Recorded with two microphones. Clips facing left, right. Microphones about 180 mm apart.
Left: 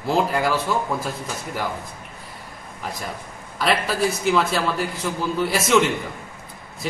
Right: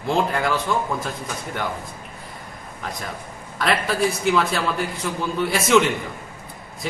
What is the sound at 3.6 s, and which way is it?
A man's voice, centre (ahead or behind).